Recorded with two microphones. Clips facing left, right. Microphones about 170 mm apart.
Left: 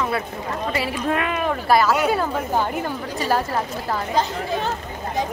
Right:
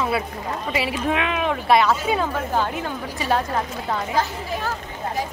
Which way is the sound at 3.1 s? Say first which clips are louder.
Even; 5° left (ahead or behind).